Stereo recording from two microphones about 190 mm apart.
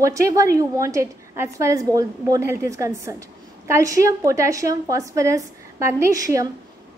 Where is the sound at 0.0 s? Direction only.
15° right (ahead or behind).